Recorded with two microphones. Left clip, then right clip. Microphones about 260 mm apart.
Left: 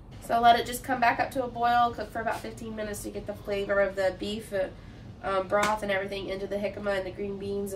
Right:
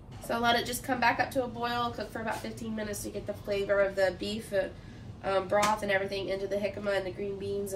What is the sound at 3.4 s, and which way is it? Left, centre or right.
A woman's voice, centre.